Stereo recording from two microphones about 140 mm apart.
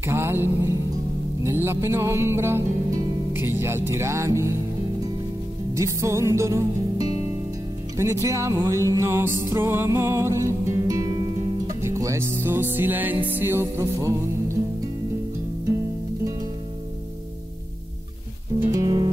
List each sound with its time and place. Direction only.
0.0 s music: 15° right (ahead or behind)
5.8 s music: 20° right (ahead or behind)
18.6 s music: 20° right (ahead or behind)